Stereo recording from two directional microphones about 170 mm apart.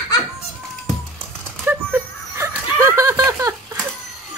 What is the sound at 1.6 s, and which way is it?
Snicker, 15° right (ahead or behind).